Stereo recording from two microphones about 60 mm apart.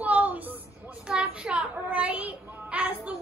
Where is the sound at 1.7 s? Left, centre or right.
Right.